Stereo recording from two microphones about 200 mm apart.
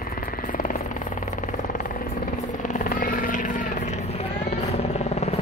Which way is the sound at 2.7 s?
40° left (ahead or behind).